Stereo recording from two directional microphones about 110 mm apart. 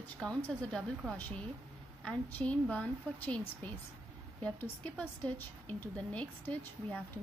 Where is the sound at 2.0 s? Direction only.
10° left (ahead or behind).